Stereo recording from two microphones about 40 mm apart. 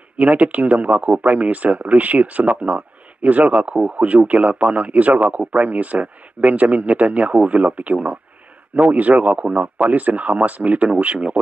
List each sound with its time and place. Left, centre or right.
0.2 s speech: right